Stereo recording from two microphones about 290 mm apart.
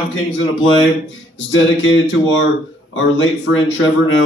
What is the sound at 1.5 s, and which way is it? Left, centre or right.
A man's voice, left.